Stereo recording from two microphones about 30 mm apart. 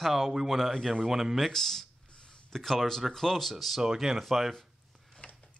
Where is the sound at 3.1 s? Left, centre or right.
Centre.